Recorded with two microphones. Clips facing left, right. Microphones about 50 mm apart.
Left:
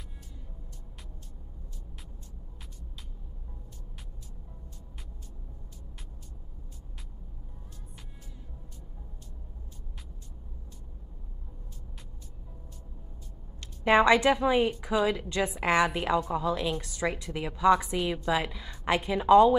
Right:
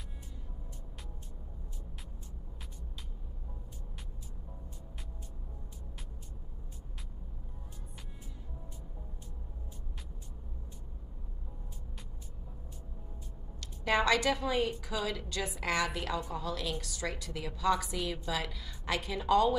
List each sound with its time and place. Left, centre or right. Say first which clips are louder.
13.6 s a woman's voice: left 8 dB; left